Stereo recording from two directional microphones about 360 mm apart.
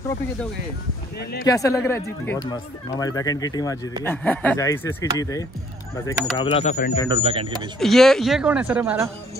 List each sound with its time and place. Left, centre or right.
1.4 s speech: centre
7.1 s speech: centre
7.8 s speech: centre